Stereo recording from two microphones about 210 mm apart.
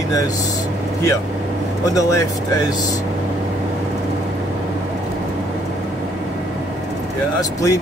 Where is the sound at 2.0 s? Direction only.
15° left (ahead or behind).